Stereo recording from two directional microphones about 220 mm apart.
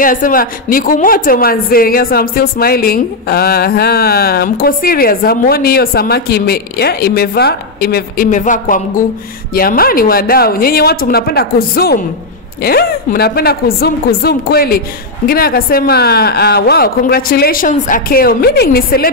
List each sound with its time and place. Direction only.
0.0 s a woman's voice: 40° left (ahead or behind)